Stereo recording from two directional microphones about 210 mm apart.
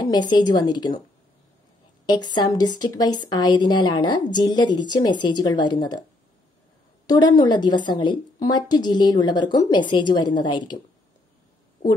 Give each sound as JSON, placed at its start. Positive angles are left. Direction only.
{"t": 0.0, "sound": "a woman's voice", "side_deg": 20}
{"t": 2.0, "sound": "a woman's voice", "side_deg": 20}
{"t": 7.1, "sound": "a woman's voice", "side_deg": 20}